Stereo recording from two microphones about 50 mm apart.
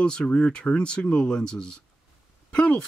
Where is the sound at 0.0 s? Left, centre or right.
Centre.